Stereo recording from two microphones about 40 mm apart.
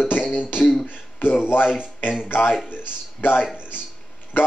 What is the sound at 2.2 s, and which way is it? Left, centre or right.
Speech, left.